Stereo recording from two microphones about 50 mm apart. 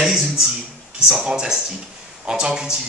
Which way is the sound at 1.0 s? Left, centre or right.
Centre.